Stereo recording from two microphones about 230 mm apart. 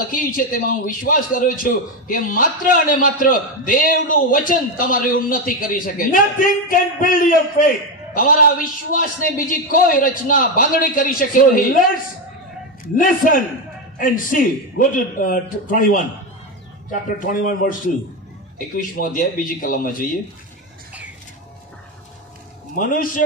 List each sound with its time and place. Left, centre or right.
0.0 s a man's voice: left
12.9 s a man's voice: left
22.8 s a man's voice: left